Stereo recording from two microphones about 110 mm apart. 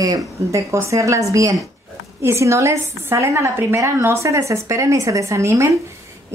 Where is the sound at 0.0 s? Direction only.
30° right (ahead or behind).